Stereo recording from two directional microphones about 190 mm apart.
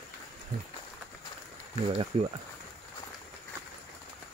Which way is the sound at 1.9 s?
30° right (ahead or behind).